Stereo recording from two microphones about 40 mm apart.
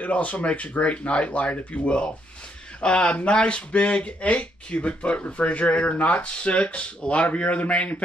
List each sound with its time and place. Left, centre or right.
0.0 s speech: left
2.8 s speech: left